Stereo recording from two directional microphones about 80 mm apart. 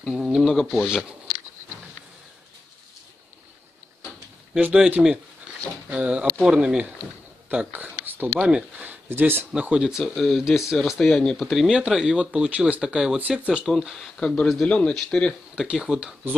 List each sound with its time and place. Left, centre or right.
0.0 s speech: centre
4.6 s speech: right
7.7 s a sound: right
8.4 s speech: centre
9.1 s speech: right
9.5 s speech: centre
11.0 s speech: centre
13.7 s speech: centre
14.6 s speech: centre
15.5 s speech: centre